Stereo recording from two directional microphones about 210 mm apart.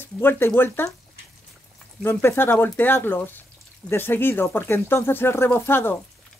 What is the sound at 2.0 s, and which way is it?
Speech, 10° left (ahead or behind).